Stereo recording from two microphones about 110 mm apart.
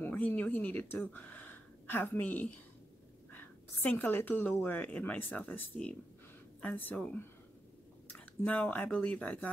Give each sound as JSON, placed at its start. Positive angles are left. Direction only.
{"t": 0.0, "sound": "speech", "side_deg": 15}
{"t": 8.5, "sound": "speech", "side_deg": 15}